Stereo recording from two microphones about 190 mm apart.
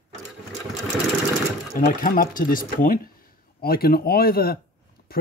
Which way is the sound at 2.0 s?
45° left (ahead or behind).